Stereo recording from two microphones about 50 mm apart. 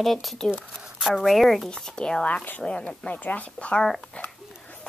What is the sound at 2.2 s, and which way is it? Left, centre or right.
Speech, left.